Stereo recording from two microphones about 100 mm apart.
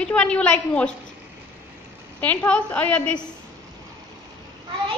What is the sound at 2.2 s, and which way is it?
Speech, 15° left (ahead or behind).